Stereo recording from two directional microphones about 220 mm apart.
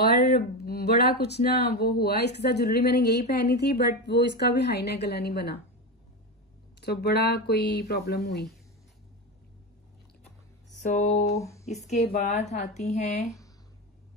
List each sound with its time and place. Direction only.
0.0 s speech: 45° left (ahead or behind)
6.8 s speech: 45° left (ahead or behind)
10.8 s a woman's voice: 35° left (ahead or behind)
11.3 s speech: 15° left (ahead or behind)
11.6 s a woman's voice: 30° left (ahead or behind)